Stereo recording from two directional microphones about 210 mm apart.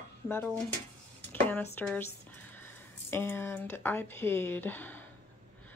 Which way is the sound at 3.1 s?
10° left (ahead or behind).